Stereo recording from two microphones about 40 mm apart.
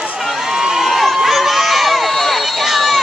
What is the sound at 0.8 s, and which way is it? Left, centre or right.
Run, centre.